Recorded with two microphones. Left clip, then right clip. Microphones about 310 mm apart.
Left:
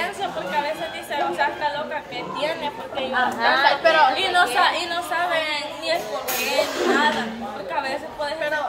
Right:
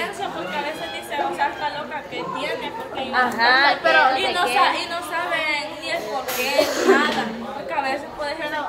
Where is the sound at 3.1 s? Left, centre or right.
Right.